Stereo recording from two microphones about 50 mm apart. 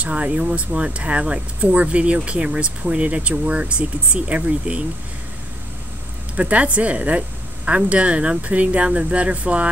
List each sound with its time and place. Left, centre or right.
0.0 s speech: right
6.3 s speech: right